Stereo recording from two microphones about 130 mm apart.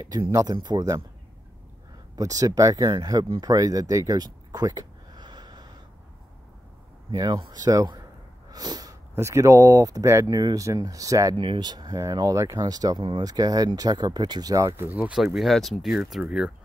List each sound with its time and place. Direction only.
0.3 s speech: 25° right (ahead or behind)
2.1 s speech: 25° right (ahead or behind)
3.3 s a sound: 25° right (ahead or behind)
7.1 s speech: 30° right (ahead or behind)
11.3 s speech: 40° right (ahead or behind); by 15.1 s 15° right (ahead or behind)
15.3 s speech: centre (ahead or behind)